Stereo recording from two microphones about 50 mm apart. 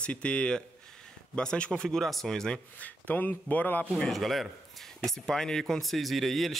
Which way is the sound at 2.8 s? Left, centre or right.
Left.